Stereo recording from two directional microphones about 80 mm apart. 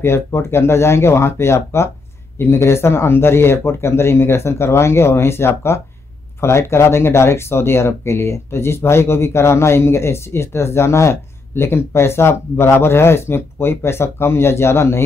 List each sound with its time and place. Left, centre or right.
0.0 s speech: left